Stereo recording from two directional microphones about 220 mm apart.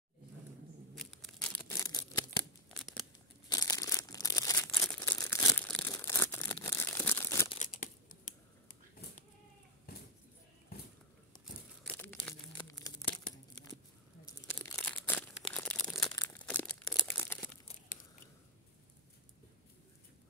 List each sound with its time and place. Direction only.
0.9 s tearing: centre (ahead or behind)
2.7 s tearing: centre (ahead or behind)
3.4 s crumpling: 15° left (ahead or behind)
7.4 s crumpling: 30° left (ahead or behind)
8.3 s a sound: 35° left (ahead or behind)
11.9 s crumpling: 5° left (ahead or behind)
14.5 s a sound: 10° left (ahead or behind)
15.5 s crumpling: 5° left (ahead or behind)